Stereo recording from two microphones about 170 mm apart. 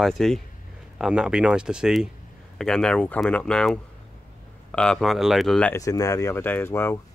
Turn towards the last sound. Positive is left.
turn(degrees=15)  # may be behind; listen again after turning